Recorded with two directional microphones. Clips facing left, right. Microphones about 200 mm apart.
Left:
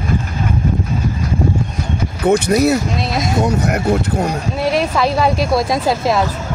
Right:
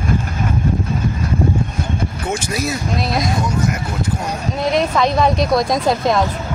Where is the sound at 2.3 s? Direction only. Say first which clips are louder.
Left 11 dB; 60° left (ahead or behind).